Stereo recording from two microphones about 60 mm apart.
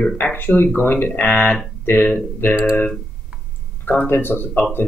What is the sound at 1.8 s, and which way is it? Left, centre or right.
Speech, left.